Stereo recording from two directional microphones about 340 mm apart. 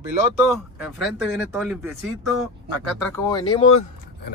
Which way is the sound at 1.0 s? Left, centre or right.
Centre.